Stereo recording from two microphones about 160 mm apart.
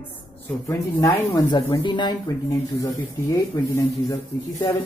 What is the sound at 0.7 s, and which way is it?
Speech, 20° left (ahead or behind).